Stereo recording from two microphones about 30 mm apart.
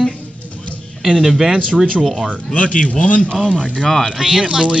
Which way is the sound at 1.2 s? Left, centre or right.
Centre.